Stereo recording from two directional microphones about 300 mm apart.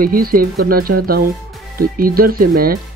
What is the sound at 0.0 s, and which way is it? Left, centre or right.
Speech, right.